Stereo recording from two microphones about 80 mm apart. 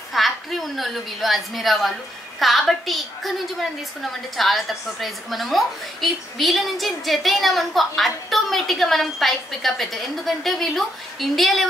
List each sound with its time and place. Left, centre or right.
0.1 s a woman's voice: centre